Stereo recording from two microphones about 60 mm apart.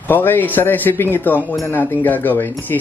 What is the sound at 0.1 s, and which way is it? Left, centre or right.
Speech, left.